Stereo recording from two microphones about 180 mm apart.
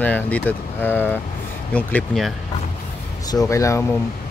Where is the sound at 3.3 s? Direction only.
20° left (ahead or behind).